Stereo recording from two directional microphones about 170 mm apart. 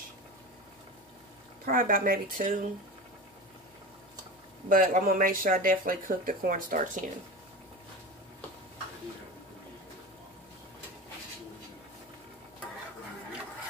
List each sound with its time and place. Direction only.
1.7 s speech: 55° right (ahead or behind)
4.6 s speech: 55° right (ahead or behind)